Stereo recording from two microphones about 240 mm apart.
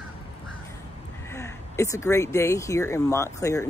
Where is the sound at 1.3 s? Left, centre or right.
Centre.